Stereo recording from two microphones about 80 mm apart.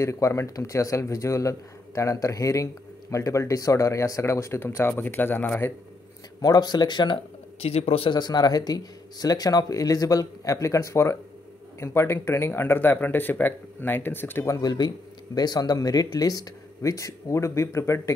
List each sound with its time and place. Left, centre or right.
0.0 s speech: left
6.4 s a man's voice: left
14.6 s a man's voice: left